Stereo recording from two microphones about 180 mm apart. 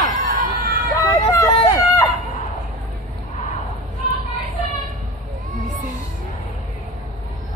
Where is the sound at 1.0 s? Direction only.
20° left (ahead or behind).